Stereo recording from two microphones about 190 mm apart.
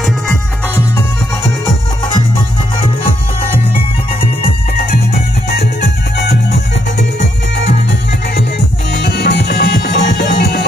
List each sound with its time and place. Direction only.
5.5 s music: 60° left (ahead or behind)
8.9 s music: 65° left (ahead or behind)